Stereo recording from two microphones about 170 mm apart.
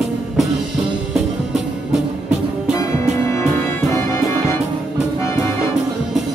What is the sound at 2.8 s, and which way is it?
Music, 15° left (ahead or behind).